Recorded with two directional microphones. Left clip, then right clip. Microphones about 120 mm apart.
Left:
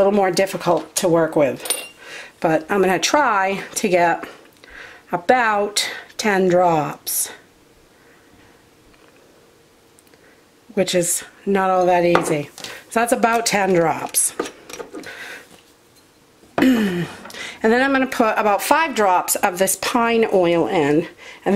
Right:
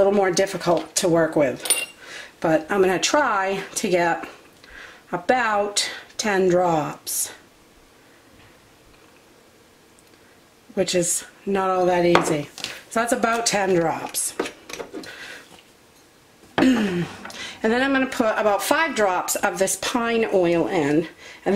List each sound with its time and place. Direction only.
0.0 s speech: 25° left (ahead or behind)
10.7 s speech: 30° left (ahead or behind)
15.0 s a sound: 30° left (ahead or behind)
16.5 s speech: 25° left (ahead or behind)